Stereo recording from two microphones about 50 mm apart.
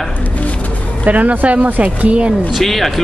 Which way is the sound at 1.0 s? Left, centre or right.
Right.